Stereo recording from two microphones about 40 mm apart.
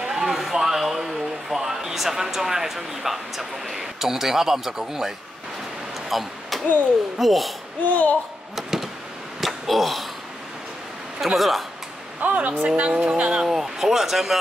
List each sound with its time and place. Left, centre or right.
0.1 s a sound: centre
7.2 s speech: centre
7.9 s speech: left
8.5 s a sound: centre
9.4 s arrow: centre
11.3 s speech: centre
12.2 s speech: right
12.9 s speech: centre
13.5 s speech: centre